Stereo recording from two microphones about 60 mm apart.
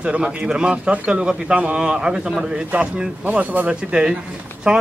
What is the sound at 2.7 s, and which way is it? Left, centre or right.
Speech, right.